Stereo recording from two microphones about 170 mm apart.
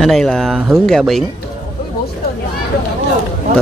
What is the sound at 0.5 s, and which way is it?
Speech, 10° right (ahead or behind).